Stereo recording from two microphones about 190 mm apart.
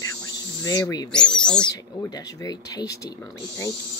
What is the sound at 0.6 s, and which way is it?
Speech, 20° left (ahead or behind).